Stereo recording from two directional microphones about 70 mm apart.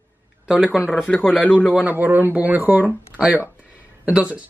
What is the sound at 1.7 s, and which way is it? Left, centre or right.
Speech, right.